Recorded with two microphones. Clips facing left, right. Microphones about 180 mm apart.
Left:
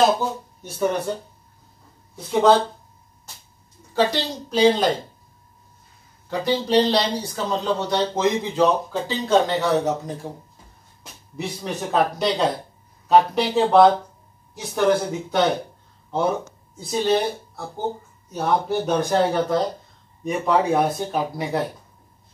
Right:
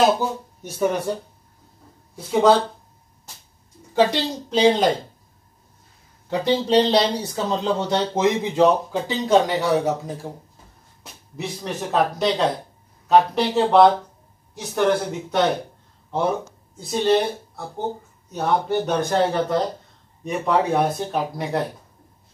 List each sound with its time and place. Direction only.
2.3 s speech: 10° right (ahead or behind)
3.9 s a woman's voice: 20° right (ahead or behind)
6.4 s speech: 20° right (ahead or behind)
11.3 s speech: centre (ahead or behind)